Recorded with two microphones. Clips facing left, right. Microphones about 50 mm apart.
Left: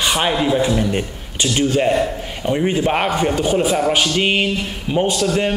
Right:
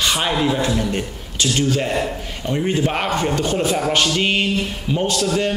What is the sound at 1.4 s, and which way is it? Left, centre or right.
A man's voice, left.